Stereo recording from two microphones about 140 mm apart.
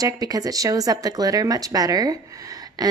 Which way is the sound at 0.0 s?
25° right (ahead or behind).